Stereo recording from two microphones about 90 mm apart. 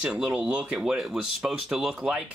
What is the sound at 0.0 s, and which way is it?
Speech, 10° right (ahead or behind).